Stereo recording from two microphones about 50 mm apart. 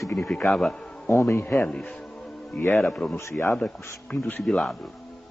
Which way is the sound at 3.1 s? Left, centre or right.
Left.